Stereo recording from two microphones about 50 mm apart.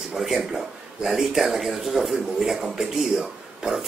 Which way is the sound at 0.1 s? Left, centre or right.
Centre.